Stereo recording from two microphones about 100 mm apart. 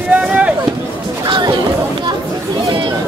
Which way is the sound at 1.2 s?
50° right (ahead or behind).